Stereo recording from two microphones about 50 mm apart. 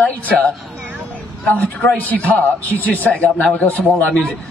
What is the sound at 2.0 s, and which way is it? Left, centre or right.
A man's voice, left.